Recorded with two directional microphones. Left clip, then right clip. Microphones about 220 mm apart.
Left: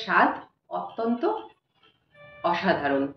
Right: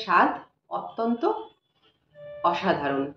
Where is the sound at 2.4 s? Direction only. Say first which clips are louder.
Even; 5° right (ahead or behind).